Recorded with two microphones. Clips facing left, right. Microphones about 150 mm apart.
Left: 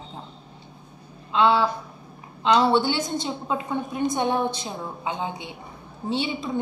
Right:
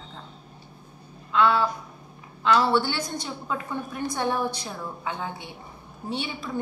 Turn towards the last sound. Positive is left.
turn(degrees=20)  # may be behind; listen again after turning